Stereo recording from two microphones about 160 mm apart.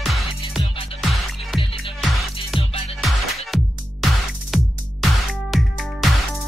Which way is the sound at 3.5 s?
Centre (ahead or behind).